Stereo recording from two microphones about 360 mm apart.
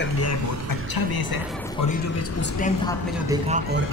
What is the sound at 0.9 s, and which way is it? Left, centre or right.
Speech, left.